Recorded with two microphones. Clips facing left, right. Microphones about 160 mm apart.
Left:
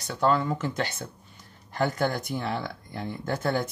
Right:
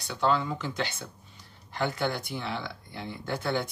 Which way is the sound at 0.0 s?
45° left (ahead or behind).